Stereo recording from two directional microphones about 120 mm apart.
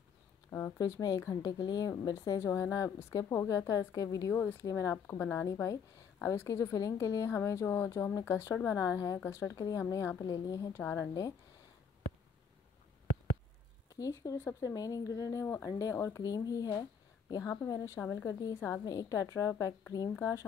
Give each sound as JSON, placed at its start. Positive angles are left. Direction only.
{"t": 0.5, "sound": "a woman's voice", "side_deg": 25}
{"t": 4.4, "sound": "a woman's voice", "side_deg": 15}
{"t": 10.8, "sound": "speech", "side_deg": 15}
{"t": 13.8, "sound": "a woman's voice", "side_deg": 30}